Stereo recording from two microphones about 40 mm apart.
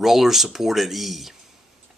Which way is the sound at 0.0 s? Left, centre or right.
Centre.